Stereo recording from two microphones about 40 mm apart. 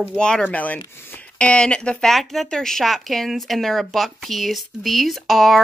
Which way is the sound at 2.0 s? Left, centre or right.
Centre.